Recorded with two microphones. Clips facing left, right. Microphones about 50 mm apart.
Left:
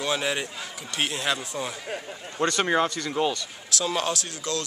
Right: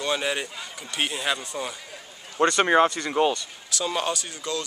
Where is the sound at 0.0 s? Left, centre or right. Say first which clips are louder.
Even; centre.